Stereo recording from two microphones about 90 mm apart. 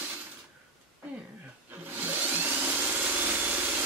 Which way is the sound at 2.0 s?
20° right (ahead or behind).